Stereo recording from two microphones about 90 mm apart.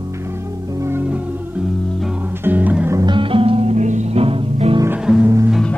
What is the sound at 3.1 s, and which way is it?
Music, 70° right (ahead or behind).